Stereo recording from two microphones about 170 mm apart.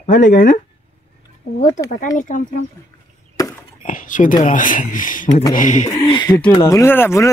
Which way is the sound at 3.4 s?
20° left (ahead or behind).